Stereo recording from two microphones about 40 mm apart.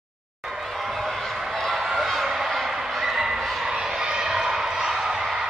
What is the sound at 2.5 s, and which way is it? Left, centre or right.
Fowl, centre.